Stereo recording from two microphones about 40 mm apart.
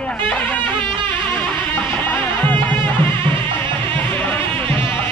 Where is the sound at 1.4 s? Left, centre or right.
Left.